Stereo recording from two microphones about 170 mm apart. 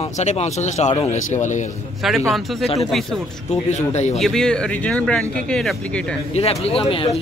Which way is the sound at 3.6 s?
40° left (ahead or behind).